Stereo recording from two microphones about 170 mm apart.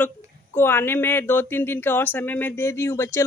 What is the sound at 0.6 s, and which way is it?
Speech, 15° left (ahead or behind).